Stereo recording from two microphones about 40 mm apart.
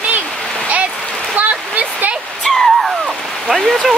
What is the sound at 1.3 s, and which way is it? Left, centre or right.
Waterfall, right.